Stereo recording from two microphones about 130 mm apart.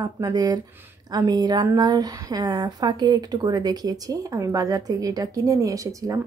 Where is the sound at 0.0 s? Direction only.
30° right (ahead or behind).